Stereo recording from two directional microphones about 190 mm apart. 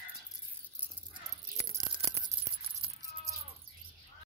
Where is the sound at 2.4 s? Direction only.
25° right (ahead or behind).